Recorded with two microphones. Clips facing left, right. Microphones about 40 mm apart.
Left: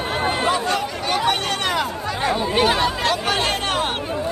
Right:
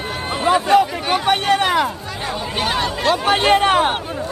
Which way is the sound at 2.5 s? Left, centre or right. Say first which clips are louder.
Even; centre.